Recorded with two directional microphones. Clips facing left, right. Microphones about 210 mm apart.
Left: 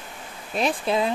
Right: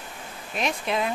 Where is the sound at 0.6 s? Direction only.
35° left (ahead or behind).